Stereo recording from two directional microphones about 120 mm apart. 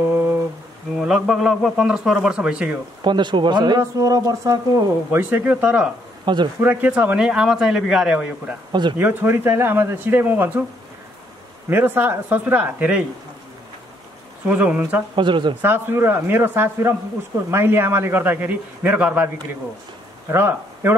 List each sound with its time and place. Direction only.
0.1 s a sound: 15° right (ahead or behind)
0.9 s a man's voice: 5° right (ahead or behind)
3.0 s speech: 40° right (ahead or behind)
5.3 s speech: 15° right (ahead or behind)
6.2 s speech: 40° right (ahead or behind)
6.6 s speech: 15° right (ahead or behind)
8.9 s speech: 15° right (ahead or behind)
11.7 s speech: 20° right (ahead or behind)
14.5 s speech: 10° right (ahead or behind)
15.1 s speech: 40° right (ahead or behind)
15.6 s speech: 20° right (ahead or behind)